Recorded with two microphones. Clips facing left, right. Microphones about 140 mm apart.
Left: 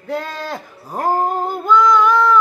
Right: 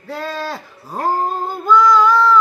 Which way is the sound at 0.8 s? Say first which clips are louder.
Left 1 dB; 15° left (ahead or behind).